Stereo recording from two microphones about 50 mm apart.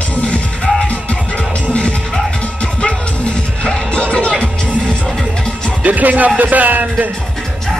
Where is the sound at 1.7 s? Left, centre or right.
Left.